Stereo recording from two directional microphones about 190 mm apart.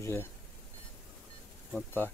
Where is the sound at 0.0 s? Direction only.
15° left (ahead or behind).